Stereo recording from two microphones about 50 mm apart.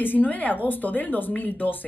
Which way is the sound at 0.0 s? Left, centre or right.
Left.